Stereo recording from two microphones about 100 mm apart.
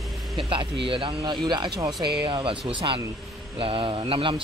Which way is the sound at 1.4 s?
50° right (ahead or behind).